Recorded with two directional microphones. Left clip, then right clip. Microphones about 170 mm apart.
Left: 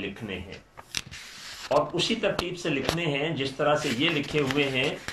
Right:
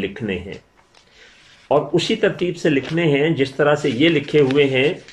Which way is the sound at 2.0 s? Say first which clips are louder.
Right 8 dB; 50° right (ahead or behind).